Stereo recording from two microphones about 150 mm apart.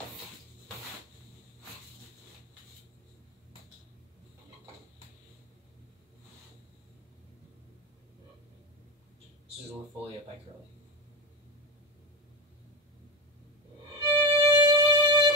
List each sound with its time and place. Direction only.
14.0 s violin: 15° right (ahead or behind)
14.6 s music: 25° right (ahead or behind)